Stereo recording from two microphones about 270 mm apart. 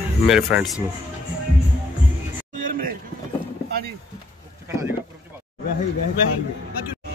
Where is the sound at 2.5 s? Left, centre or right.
Right.